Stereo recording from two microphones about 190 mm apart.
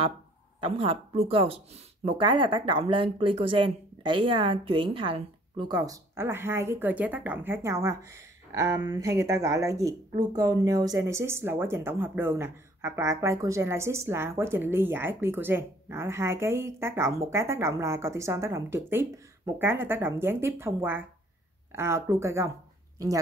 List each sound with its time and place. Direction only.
0.6 s a woman's voice: 30° right (ahead or behind)